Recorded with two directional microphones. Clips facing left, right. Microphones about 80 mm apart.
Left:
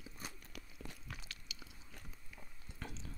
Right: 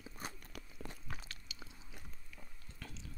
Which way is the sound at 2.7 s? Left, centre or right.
Left.